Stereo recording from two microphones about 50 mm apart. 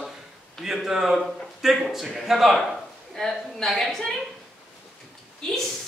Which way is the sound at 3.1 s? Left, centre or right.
Centre.